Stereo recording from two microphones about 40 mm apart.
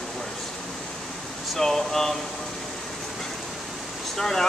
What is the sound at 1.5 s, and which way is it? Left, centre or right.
Speech, centre.